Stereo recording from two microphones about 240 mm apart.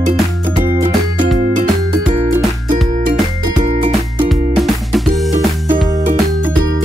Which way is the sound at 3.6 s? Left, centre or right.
Right.